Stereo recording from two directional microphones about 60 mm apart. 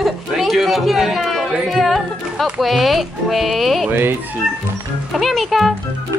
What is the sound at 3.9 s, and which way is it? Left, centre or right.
Music, right.